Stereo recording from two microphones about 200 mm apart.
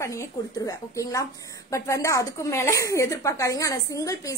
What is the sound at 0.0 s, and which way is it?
A woman's voice, 15° left (ahead or behind).